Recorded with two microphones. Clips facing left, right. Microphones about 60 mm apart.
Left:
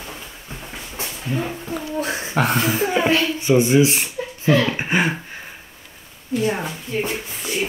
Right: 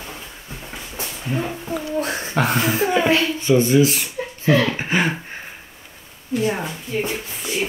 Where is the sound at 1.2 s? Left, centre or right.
Centre.